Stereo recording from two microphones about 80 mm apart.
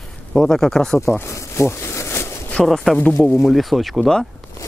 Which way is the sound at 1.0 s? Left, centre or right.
Left.